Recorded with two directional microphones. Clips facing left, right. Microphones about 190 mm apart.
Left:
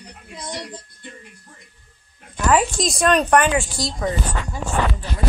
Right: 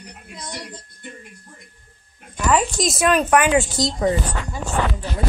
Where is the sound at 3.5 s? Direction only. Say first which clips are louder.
Right 4 dB; 20° right (ahead or behind).